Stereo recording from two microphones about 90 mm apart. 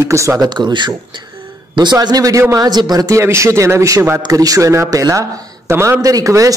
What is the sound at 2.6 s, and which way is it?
A man's voice, 45° right (ahead or behind).